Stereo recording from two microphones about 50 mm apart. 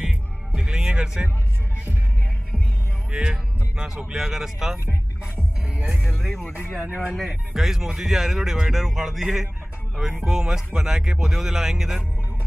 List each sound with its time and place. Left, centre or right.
0.0 s music: centre
3.1 s music: centre
4.1 s speech: centre
5.9 s speech: centre
6.4 s speech: left
7.2 s speech: centre